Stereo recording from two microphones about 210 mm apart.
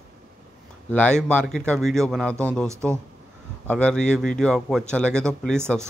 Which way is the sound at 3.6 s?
5° left (ahead or behind).